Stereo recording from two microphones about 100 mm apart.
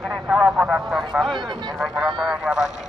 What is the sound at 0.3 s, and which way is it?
Speech, 10° right (ahead or behind).